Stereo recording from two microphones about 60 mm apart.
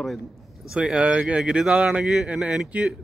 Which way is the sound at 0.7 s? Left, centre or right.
Centre.